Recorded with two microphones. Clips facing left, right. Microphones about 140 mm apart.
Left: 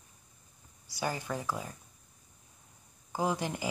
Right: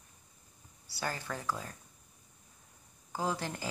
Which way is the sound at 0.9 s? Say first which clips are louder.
Left 3 dB; 15° left (ahead or behind).